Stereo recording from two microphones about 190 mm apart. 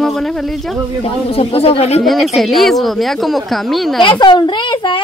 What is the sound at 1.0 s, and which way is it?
Speech, 30° left (ahead or behind).